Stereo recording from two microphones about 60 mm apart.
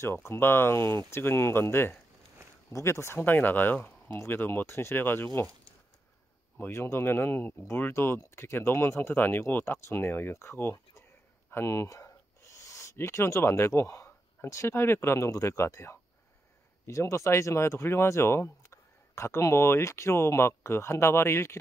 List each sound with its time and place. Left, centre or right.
0.0 s speech: left
2.7 s speech: left
4.6 s speech: left
4.9 s speech: left
6.6 s speech: left
9.1 s speech: left
11.9 s a sound: left
12.9 s speech: left